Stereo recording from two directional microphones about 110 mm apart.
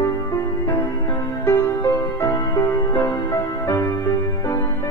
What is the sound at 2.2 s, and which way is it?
Music, 30° left (ahead or behind).